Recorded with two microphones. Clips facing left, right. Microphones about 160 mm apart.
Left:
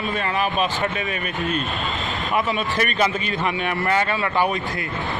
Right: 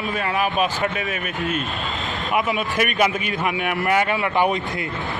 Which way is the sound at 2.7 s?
10° right (ahead or behind).